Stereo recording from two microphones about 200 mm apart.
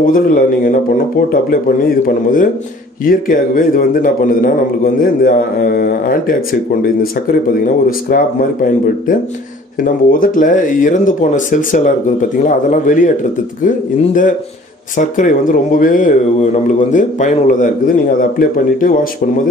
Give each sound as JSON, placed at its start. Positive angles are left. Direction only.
{"t": 0.0, "sound": "speech", "side_deg": 45}
{"t": 2.0, "sound": "speech", "side_deg": 45}